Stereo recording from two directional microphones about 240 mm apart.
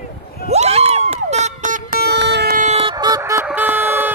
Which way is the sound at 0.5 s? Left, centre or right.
Right.